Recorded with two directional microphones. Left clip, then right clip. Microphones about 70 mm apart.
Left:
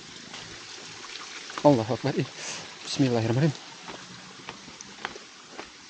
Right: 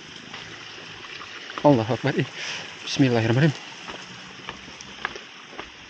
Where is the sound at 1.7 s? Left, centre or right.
Centre.